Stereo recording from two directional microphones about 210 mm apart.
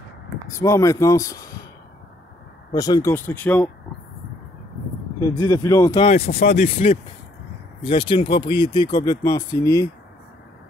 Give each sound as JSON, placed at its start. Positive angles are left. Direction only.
{"t": 0.5, "sound": "speech", "side_deg": 15}
{"t": 2.7, "sound": "speech", "side_deg": 20}
{"t": 5.2, "sound": "speech", "side_deg": 15}
{"t": 6.0, "sound": "speech", "side_deg": 30}